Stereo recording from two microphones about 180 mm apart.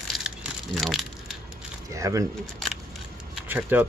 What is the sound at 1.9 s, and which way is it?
Speech, 15° right (ahead or behind).